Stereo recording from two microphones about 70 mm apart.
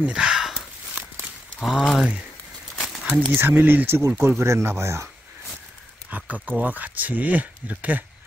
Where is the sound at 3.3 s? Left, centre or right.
Right.